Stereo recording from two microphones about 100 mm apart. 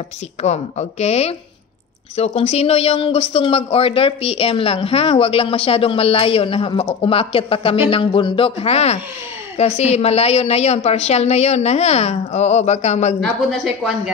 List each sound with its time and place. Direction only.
0.4 s a woman's voice: 90° left